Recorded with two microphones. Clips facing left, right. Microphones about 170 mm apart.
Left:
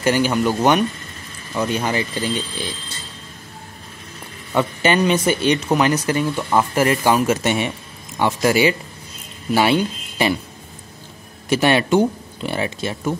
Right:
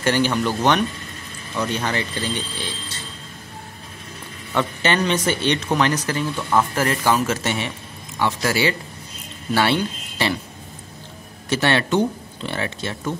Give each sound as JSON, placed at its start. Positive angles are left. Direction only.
{"t": 0.0, "sound": "speech", "side_deg": 10}
{"t": 4.6, "sound": "speech", "side_deg": 10}
{"t": 11.4, "sound": "speech", "side_deg": 10}